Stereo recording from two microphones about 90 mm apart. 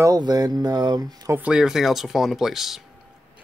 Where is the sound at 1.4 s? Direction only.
10° right (ahead or behind).